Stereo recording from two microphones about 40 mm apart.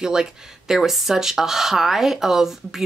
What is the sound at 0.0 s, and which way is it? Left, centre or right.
Speech, centre.